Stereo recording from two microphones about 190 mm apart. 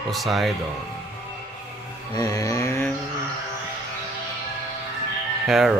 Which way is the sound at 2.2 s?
20° left (ahead or behind).